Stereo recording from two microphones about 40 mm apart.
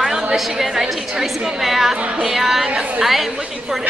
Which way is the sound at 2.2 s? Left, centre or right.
Centre.